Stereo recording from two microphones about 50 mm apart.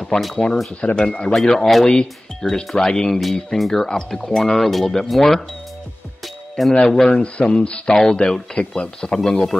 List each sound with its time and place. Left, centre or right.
0.0 s speech: centre
0.9 s speech: centre
3.2 s speech: centre
6.2 s music: centre
6.7 s speech: centre
7.9 s speech: centre
8.5 s speech: centre